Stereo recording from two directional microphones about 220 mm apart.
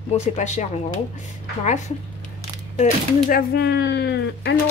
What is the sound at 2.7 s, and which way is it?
A woman's voice, 35° left (ahead or behind).